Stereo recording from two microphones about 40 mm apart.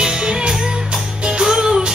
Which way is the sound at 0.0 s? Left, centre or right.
Right.